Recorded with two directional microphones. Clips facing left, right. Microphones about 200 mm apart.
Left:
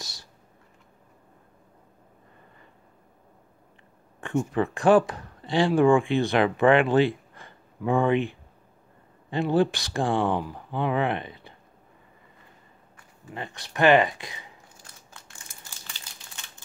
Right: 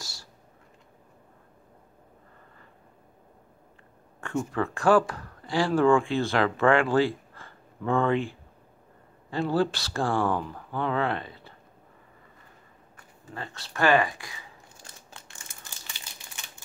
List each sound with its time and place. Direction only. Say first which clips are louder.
0.0 s a sound: left 1 dB; 20° left (ahead or behind)
4.2 s speech: left 3 dB; 20° left (ahead or behind)
13.3 s speech: left 2 dB; 15° left (ahead or behind)